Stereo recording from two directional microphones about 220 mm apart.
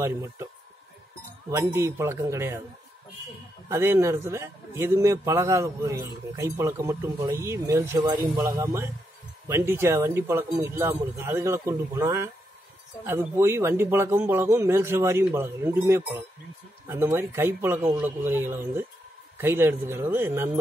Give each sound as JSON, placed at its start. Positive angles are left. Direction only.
{"t": 0.0, "sound": "a man's voice", "side_deg": -10}
{"t": 1.5, "sound": "a man's voice", "side_deg": -10}
{"t": 3.6, "sound": "a man's voice", "side_deg": -10}